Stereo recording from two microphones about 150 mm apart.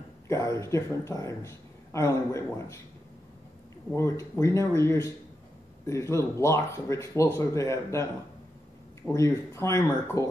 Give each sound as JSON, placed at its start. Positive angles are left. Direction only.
{"t": 0.3, "sound": "a man's voice", "side_deg": 20}
{"t": 3.9, "sound": "a man's voice", "side_deg": 20}
{"t": 9.1, "sound": "a man's voice", "side_deg": 20}